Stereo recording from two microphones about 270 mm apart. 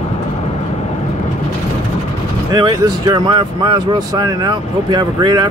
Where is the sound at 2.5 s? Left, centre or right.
Centre.